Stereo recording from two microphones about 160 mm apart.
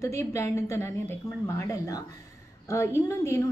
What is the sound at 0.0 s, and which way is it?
A woman's voice, 20° left (ahead or behind).